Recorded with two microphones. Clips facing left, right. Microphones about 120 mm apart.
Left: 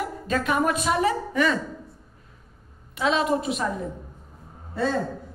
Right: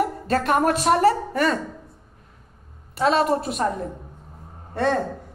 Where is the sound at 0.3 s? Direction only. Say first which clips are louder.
Right 2 dB; 55° right (ahead or behind).